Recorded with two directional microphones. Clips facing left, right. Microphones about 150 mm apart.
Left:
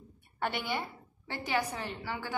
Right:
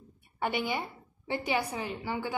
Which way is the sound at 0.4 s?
10° right (ahead or behind).